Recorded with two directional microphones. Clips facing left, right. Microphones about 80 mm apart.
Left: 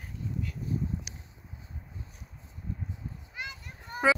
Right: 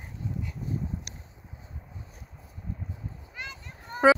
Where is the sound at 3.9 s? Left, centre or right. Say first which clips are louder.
Right 6 dB; right.